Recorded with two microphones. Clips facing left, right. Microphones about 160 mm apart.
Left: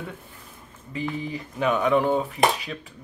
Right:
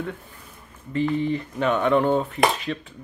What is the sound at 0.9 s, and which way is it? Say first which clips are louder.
Speech: right 7 dB; 5° left (ahead or behind).